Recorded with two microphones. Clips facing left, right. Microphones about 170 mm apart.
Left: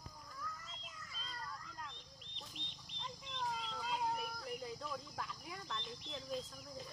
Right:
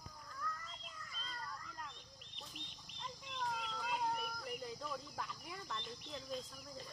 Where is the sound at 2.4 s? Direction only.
5° right (ahead or behind).